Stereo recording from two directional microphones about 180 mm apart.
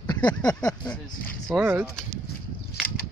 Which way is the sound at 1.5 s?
10° right (ahead or behind).